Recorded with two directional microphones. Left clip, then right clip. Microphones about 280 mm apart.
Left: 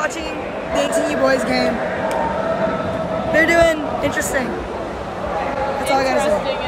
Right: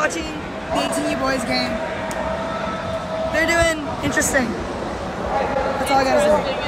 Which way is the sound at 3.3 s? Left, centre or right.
Centre.